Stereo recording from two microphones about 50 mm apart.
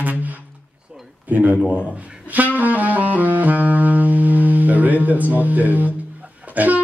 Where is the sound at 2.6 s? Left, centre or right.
Right.